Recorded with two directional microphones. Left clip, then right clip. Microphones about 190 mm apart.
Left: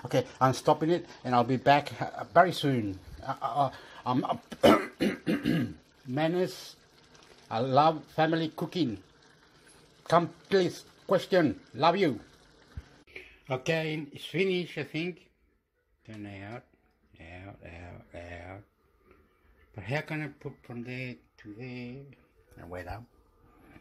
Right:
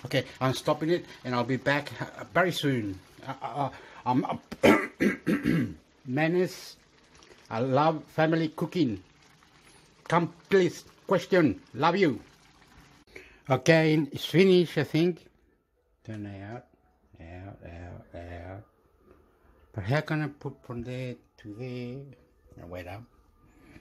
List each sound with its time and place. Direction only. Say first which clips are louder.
0.0 s speech: left 3 dB; 5° right (ahead or behind)
10.0 s speech: left 1 dB; 15° right (ahead or behind)
13.7 s speech: right 10 dB; 55° right (ahead or behind)
16.1 s speech: right 2 dB; 30° right (ahead or behind)
17.2 s a sound: right 1 dB; 25° right (ahead or behind)
19.7 s speech: right 4 dB; 40° right (ahead or behind)
21.4 s speech: right 4 dB; 20° right (ahead or behind)